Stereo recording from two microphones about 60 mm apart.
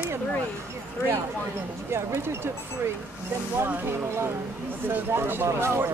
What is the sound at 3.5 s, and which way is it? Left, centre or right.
Speech, right.